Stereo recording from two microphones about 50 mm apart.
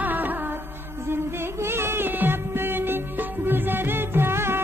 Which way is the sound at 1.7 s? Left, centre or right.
Right.